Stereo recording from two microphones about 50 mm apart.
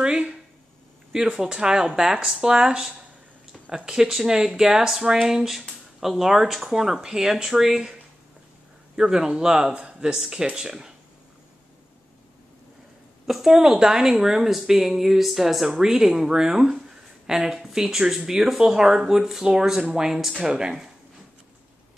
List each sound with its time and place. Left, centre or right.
0.0 s a sound: centre
1.1 s speech: centre
10.1 s speech: centre
13.3 s speech: centre